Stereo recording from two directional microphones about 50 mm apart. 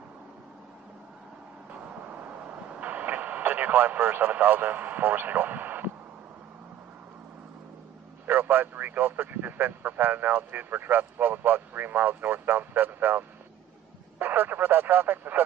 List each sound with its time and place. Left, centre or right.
1.7 s vehicle: right
8.3 s speech: right